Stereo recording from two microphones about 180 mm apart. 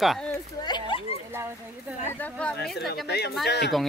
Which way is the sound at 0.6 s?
25° left (ahead or behind).